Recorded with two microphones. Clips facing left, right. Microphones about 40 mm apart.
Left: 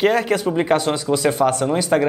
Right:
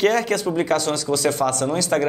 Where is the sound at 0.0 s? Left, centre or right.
Centre.